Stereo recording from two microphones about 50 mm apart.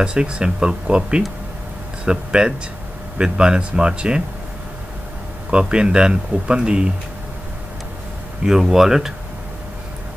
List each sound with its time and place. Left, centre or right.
0.0 s speech: centre
5.5 s speech: centre
8.5 s speech: centre